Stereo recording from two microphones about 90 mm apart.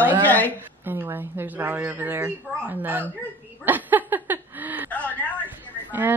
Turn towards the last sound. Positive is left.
turn(degrees=-20)  # may be behind; listen again after turning